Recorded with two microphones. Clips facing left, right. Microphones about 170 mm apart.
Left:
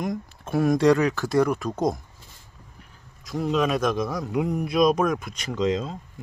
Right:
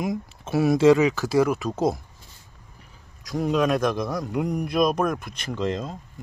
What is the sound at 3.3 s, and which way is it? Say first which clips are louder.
A man's voice: right 1 dB; centre (ahead or behind).